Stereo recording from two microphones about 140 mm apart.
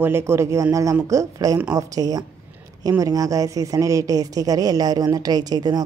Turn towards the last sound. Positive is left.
turn(degrees=-30)  # may be behind; listen again after turning